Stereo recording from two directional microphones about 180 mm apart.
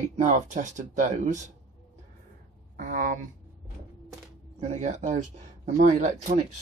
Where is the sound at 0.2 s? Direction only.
40° right (ahead or behind).